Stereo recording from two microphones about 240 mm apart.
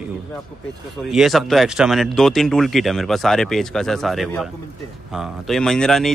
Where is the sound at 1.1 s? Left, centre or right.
Centre.